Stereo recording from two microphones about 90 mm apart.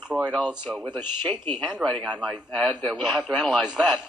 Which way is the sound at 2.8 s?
5° right (ahead or behind).